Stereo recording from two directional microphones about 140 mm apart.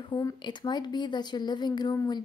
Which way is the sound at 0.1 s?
30° left (ahead or behind).